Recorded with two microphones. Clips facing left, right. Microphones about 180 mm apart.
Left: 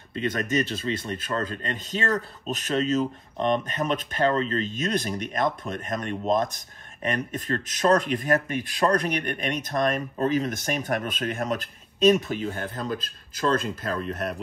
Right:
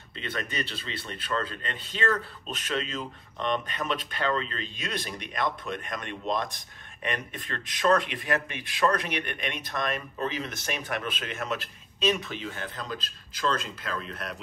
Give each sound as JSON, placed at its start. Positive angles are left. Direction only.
{"t": 0.1, "sound": "a man's voice", "side_deg": 45}